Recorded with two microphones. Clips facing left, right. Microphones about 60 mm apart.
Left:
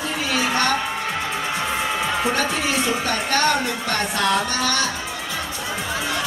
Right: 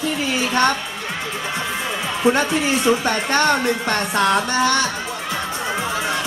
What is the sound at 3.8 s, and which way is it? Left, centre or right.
Speech, right.